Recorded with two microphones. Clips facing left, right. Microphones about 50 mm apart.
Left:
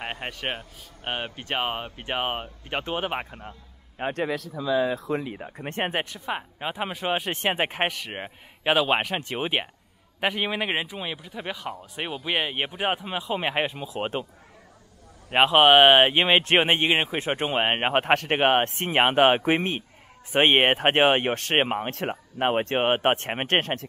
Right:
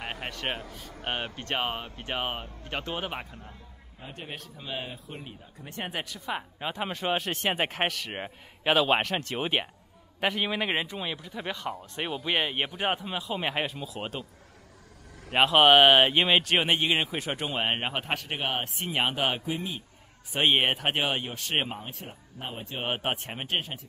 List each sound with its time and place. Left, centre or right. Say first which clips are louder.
0.0 s speech: left 2 dB; centre; by 3.4 s left
4.0 s a man's voice: left 15 dB; left
4.9 s speech: left 14 dB; left
5.6 s speech: left 7 dB; left; by 7.2 s centre
7.2 s speech: left 3 dB; left
13.7 s speech: left 5 dB; left
15.3 s speech: left 3 dB; centre; by 19.4 s left
19.4 s speech: left 9 dB; left
20.3 s speech: left 5 dB; left
21.9 s speech: left 13 dB; left
22.8 s speech: left 6 dB; left
23.1 s speech: left 7 dB; left